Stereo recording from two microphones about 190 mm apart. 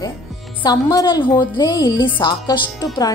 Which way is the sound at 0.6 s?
20° left (ahead or behind).